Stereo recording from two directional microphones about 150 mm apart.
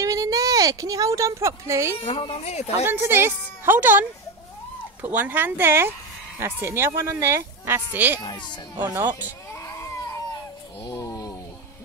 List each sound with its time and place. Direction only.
0.0 s speech: 20° right (ahead or behind)
2.0 s speech: 35° left (ahead or behind)
2.9 s speech: 15° right (ahead or behind)
5.0 s speech: 10° right (ahead or behind)
8.2 s speech: 30° left (ahead or behind)
8.9 s speech: 15° right (ahead or behind)
10.9 s a sound: 25° left (ahead or behind)